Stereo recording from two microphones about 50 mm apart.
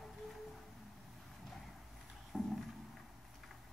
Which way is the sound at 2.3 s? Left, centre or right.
Left.